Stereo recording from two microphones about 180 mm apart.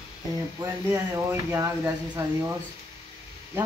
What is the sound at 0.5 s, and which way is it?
Speech, 15° right (ahead or behind).